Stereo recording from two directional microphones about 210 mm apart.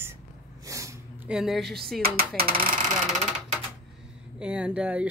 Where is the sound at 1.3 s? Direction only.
Centre (ahead or behind).